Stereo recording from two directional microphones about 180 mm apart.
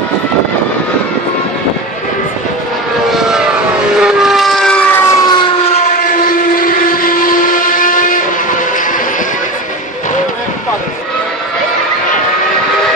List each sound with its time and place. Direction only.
3.1 s vehicle: 5° right (ahead or behind); by 5.5 s 25° left (ahead or behind)
5.7 s train: 40° left (ahead or behind)